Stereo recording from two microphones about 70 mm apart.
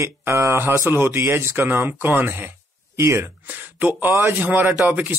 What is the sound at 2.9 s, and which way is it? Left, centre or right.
Speech, right.